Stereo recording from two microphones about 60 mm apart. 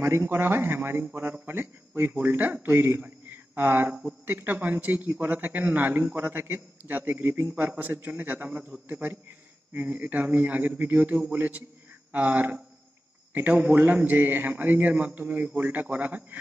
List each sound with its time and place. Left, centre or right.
0.3 s a man's voice: right
3.0 s a sound: right
4.3 s a man's voice: right